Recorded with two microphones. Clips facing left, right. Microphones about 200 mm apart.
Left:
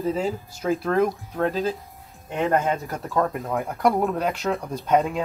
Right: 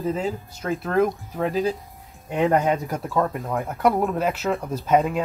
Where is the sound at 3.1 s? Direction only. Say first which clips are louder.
Left 1 dB; centre (ahead or behind).